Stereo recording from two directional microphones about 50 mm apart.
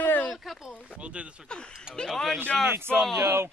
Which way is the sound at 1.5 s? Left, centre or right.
Centre.